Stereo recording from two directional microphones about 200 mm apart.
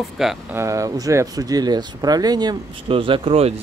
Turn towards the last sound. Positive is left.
turn(degrees=-30)  # may be behind; listen again after turning